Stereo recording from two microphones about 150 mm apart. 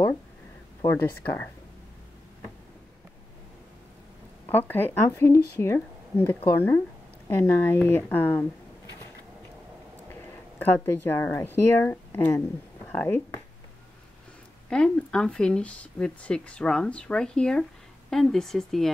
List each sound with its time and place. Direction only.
4.5 s speech: 15° left (ahead or behind)
10.6 s speech: 10° left (ahead or behind)
14.7 s speech: 5° left (ahead or behind)